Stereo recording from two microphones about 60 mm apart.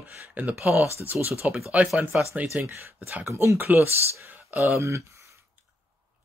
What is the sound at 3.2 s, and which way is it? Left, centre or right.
Speech, right.